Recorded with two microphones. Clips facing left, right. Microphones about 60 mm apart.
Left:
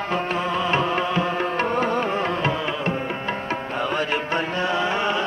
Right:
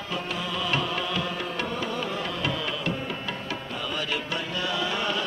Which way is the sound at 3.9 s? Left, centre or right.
Left.